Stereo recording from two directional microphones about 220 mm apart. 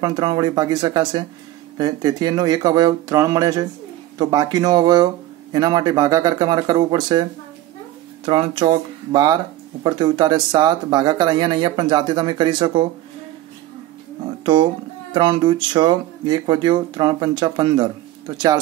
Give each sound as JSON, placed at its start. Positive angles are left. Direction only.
{"t": 0.0, "sound": "speech", "side_deg": -20}
{"t": 8.3, "sound": "speech", "side_deg": -25}
{"t": 14.4, "sound": "speech", "side_deg": -20}